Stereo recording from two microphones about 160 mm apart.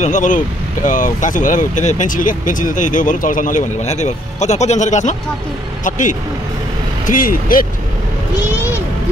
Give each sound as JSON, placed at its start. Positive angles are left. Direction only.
{"t": 0.0, "sound": "speech", "side_deg": 50}